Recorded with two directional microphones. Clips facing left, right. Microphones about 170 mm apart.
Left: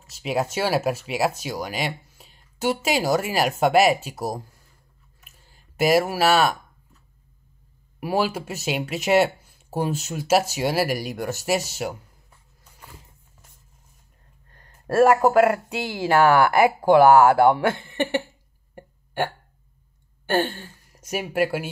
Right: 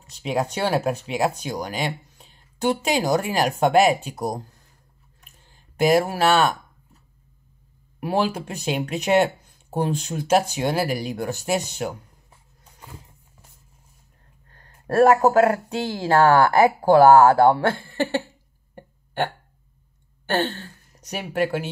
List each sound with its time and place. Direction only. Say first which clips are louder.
0.1 s speech: even; 5° left (ahead or behind)
5.2 s a sound: right 1 dB; 5° left (ahead or behind)
8.0 s speech: right 1 dB; 5° left (ahead or behind)
15.7 s speech: right 1 dB; 15° left (ahead or behind)
18.8 s hiccup: right 1 dB; 10° left (ahead or behind)
20.2 s a woman's voice: left 1 dB; 10° left (ahead or behind)